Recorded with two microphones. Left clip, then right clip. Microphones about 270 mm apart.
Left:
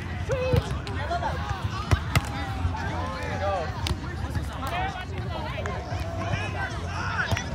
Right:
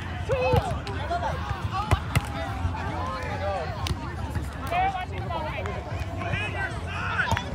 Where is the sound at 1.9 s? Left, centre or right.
Right.